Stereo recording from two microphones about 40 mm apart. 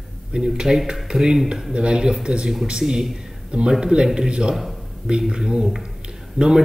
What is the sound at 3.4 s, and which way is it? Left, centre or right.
A man's voice, right.